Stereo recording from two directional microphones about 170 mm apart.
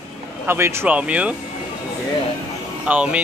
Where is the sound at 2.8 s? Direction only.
5° right (ahead or behind).